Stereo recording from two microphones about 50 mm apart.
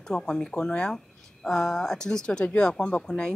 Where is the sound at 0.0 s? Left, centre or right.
Centre.